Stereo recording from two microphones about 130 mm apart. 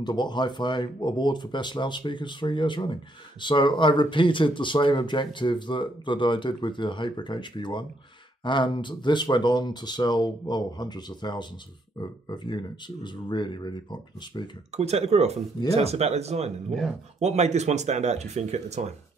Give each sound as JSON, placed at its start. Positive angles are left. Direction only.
{"t": 0.0, "sound": "speech", "side_deg": 35}
{"t": 14.8, "sound": "speech", "side_deg": -55}